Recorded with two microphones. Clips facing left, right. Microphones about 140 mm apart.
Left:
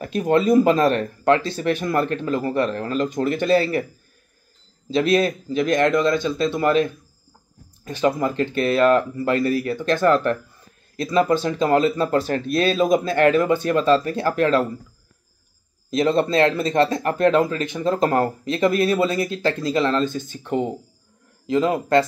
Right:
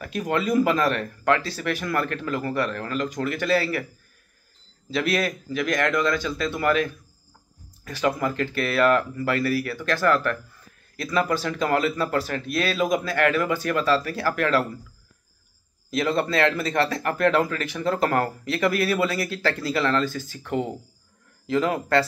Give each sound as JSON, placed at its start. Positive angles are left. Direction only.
{"t": 0.0, "sound": "speech", "side_deg": 30}
{"t": 4.9, "sound": "speech", "side_deg": 25}
{"t": 15.9, "sound": "speech", "side_deg": 25}